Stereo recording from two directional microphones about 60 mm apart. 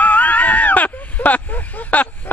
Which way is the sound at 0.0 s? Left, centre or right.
Left.